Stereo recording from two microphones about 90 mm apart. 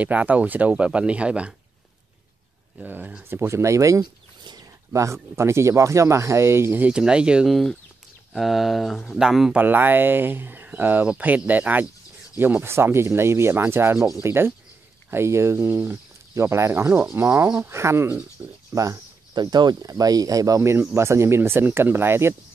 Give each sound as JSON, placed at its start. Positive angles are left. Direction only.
{"t": 0.0, "sound": "speech", "side_deg": -15}
{"t": 2.8, "sound": "speech", "side_deg": -15}
{"t": 4.0, "sound": "a sound", "side_deg": -55}
{"t": 4.9, "sound": "speech", "side_deg": -35}
{"t": 6.9, "sound": "speech", "side_deg": -10}
{"t": 9.6, "sound": "speech", "side_deg": -20}
{"t": 19.3, "sound": "speech", "side_deg": -50}